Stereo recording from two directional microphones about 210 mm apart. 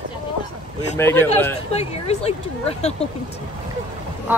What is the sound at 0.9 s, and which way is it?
Speech, 10° left (ahead or behind).